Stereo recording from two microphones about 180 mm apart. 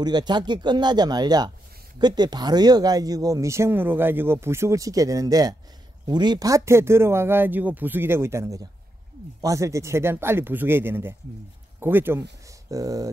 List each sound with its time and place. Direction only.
0.0 s speech: 25° right (ahead or behind)